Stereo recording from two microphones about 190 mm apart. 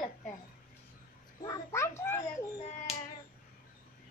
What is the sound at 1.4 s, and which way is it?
Speech, 15° left (ahead or behind).